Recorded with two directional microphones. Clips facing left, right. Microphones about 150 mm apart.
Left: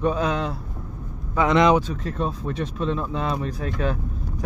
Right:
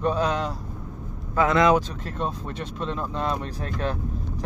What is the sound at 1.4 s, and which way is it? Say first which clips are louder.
Speech: left 1 dB; 20° left (ahead or behind).